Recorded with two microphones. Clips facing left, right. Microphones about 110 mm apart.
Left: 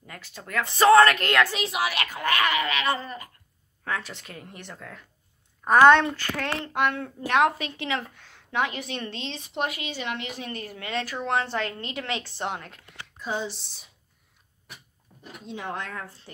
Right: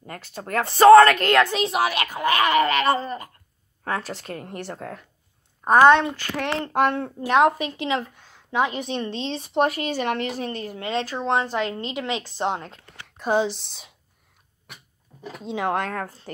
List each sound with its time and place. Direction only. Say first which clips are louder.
0.0 s a woman's voice: right 7 dB; 40° right (ahead or behind); by 1.7 s 25° right (ahead or behind)
1.7 s a woman's voice: right 5 dB; 40° right (ahead or behind)
2.0 s speech: right 5 dB; 15° right (ahead or behind)
2.5 s a woman's voice: right 7 dB; 40° right (ahead or behind)
5.6 s a woman's voice: right 2 dB; 25° right (ahead or behind)
6.6 s a woman's voice: right 7 dB; 40° right (ahead or behind)
7.2 s a woman's voice: right 4 dB; 20° right (ahead or behind); by 10.6 s 35° right (ahead or behind)
10.6 s a woman's voice: right 2 dB; 25° right (ahead or behind)
13.2 s speech: right 9 dB; 65° right (ahead or behind)
15.4 s speech: right 9 dB; 90° right; by 16.2 s 55° right (ahead or behind)